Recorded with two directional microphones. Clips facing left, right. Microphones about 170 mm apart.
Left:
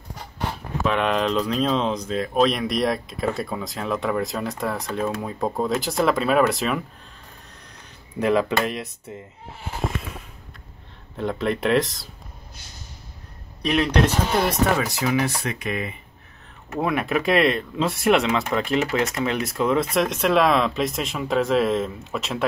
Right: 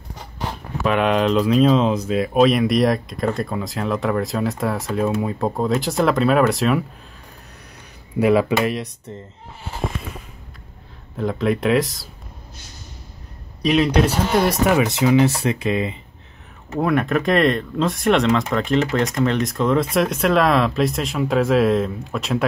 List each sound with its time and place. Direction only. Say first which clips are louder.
0.8 s speech: right 4 dB; 5° right (ahead or behind)
8.2 s speech: right 4 dB; 5° right (ahead or behind)
11.1 s speech: right 4 dB; centre (ahead or behind)
14.8 s speech: right 7 dB; 20° right (ahead or behind)
16.7 s speech: right 4 dB; 5° left (ahead or behind)